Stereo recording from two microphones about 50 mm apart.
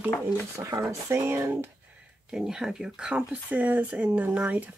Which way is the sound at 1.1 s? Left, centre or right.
Right.